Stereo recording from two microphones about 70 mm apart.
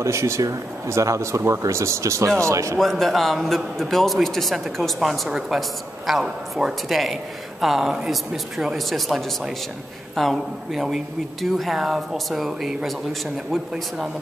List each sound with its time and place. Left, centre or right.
0.0 s speech: right
2.8 s a man's voice: centre